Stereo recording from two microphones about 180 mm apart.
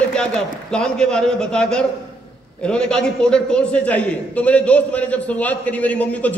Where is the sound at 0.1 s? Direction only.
5° left (ahead or behind).